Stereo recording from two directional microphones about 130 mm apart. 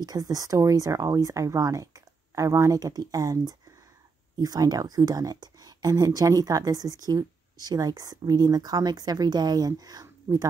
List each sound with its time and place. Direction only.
0.0 s speech: 30° right (ahead or behind)